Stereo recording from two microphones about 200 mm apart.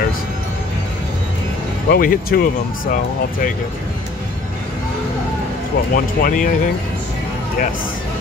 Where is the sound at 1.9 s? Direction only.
45° left (ahead or behind).